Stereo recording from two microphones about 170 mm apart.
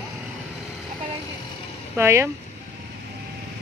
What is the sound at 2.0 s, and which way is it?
Speech, 15° right (ahead or behind).